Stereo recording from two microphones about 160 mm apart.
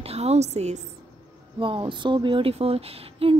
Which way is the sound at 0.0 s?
40° right (ahead or behind).